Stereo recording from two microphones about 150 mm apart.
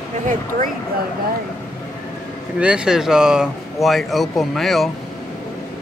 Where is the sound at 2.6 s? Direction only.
5° right (ahead or behind).